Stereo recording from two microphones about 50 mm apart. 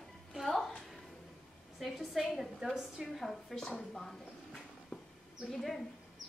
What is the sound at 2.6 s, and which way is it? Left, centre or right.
Speech, centre.